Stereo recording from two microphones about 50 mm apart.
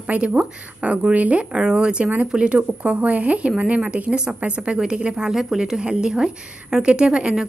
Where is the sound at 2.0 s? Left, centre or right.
Right.